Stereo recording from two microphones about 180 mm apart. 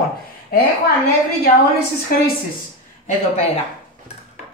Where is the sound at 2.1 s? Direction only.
55° left (ahead or behind).